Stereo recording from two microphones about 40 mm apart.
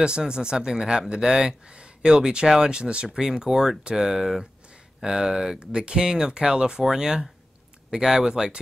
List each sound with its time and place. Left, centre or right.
0.0 s speech: right